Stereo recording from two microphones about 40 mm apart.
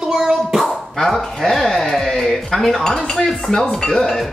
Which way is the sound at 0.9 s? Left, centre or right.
Centre.